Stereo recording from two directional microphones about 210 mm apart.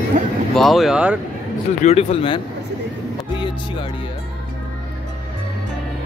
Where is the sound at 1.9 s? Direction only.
30° left (ahead or behind).